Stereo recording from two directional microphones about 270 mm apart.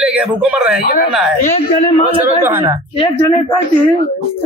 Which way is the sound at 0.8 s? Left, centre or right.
Left.